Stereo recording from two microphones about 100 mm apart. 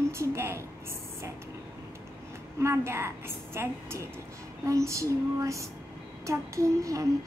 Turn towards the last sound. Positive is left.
turn(degrees=-35)  # may be behind; listen again after turning